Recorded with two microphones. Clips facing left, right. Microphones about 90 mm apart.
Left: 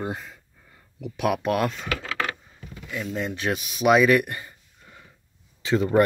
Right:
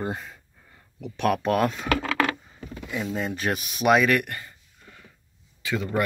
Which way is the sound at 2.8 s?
15° right (ahead or behind).